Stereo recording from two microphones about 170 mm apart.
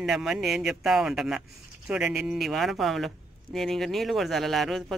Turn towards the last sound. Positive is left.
turn(degrees=0)  # may be behind; listen again after turning